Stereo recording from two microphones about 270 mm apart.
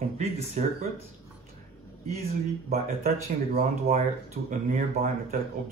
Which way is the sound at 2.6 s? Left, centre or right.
Right.